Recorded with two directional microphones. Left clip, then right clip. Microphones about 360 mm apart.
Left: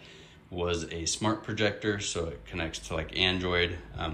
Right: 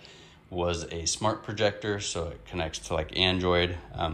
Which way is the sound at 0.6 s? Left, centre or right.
Centre.